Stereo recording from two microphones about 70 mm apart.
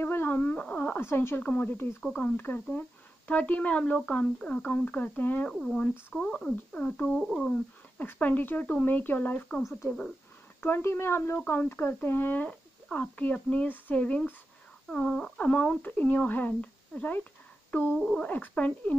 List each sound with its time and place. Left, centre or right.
0.0 s a sound: left
1.4 s speech: left
5.5 s speech: centre
6.2 s music: centre
7.2 s speech: centre
8.0 s speech: left
10.6 s speech: left; by 14.2 s centre
14.9 s music: centre
15.4 s speech: centre
17.9 s speech: centre
18.2 s speech: left